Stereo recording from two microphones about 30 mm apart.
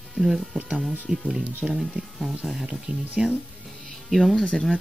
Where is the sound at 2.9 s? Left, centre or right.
Right.